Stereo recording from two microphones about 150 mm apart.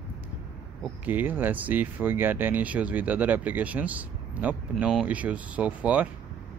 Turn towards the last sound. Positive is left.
turn(degrees=-10)  # may be behind; listen again after turning